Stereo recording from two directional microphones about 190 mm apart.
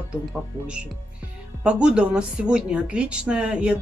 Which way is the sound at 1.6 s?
5° right (ahead or behind).